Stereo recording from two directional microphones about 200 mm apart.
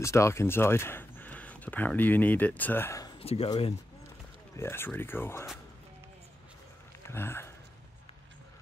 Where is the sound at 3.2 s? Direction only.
30° left (ahead or behind).